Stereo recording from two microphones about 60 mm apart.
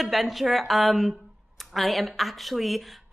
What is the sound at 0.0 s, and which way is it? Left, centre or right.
A woman's voice, centre.